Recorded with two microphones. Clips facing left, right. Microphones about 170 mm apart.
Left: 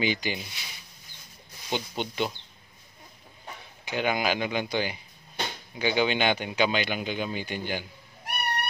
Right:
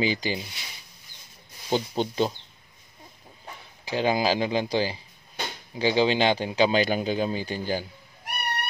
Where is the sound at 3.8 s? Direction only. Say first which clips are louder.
Right 3 dB; 30° right (ahead or behind).